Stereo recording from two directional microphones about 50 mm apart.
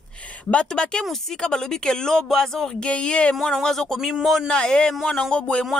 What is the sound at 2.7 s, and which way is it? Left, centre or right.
Speech, left.